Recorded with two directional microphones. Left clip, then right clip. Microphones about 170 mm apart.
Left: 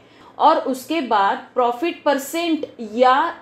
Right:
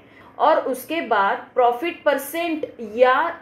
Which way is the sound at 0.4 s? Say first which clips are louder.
Left 2 dB; 40° left (ahead or behind).